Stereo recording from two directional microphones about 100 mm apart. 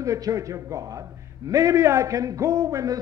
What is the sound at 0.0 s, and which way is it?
A man's voice, 35° right (ahead or behind).